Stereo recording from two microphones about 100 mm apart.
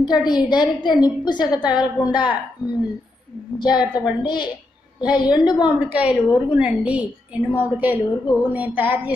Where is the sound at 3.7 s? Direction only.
45° left (ahead or behind).